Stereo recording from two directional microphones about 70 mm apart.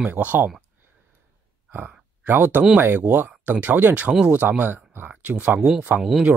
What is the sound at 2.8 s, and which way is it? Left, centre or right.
Speech, right.